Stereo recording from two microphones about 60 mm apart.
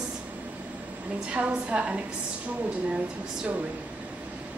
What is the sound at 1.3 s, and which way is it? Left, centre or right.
Speech, right.